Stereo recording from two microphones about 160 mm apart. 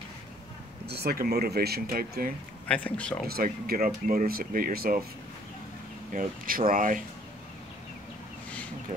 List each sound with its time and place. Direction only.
0.8 s speech: 85° right; by 2.3 s 65° right (ahead or behind)
2.7 s speech: 5° left (ahead or behind)
3.3 s speech: 70° right (ahead or behind)
6.1 s speech: 60° right (ahead or behind)